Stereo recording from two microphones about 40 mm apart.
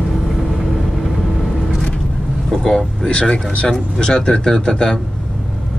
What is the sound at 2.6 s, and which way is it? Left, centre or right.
Speech, centre.